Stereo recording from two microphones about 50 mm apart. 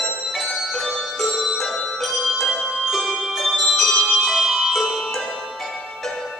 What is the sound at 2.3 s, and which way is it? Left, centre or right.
Music, centre.